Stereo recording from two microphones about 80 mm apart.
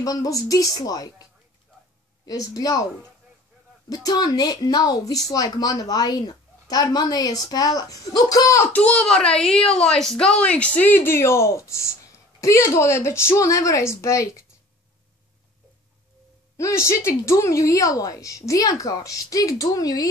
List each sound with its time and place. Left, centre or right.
0.0 s a woman's voice: left
2.2 s a woman's voice: left
3.9 s a woman's voice: left
8.7 s a woman's voice: centre; by 14.4 s left
16.5 s a woman's voice: left